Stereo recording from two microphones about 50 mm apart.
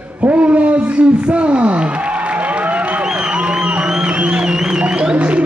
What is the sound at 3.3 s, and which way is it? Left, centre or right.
Music, right.